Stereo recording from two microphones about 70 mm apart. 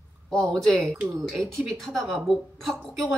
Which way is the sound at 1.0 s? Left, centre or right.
Centre.